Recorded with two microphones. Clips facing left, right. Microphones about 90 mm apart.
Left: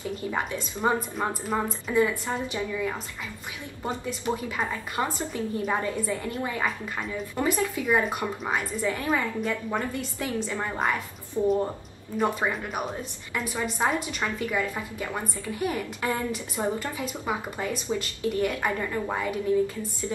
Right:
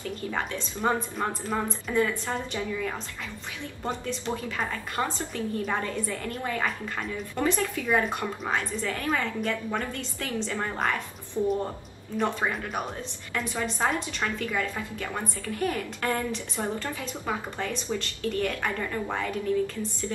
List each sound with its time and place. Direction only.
0.0 s a woman's voice: 15° left (ahead or behind)
12.2 s a woman's voice: 10° left (ahead or behind)